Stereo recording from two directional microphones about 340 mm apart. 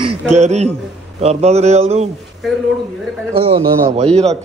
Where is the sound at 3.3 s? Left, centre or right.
Centre.